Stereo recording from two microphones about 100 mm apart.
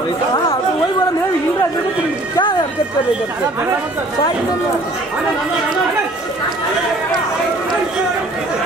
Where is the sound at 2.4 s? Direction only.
50° left (ahead or behind).